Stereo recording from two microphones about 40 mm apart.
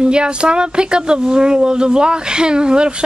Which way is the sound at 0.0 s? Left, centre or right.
Right.